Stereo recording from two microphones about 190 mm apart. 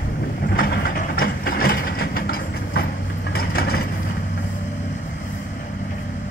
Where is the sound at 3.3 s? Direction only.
50° left (ahead or behind).